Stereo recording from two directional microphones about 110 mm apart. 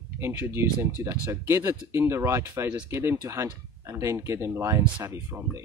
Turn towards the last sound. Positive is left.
turn(degrees=-30)  # may be behind; listen again after turning